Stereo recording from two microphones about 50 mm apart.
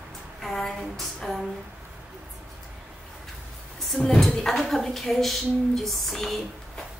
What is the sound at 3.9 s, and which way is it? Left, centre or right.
Speech, centre.